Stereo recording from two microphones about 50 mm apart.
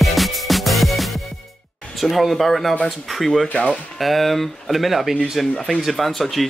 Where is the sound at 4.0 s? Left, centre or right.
Centre.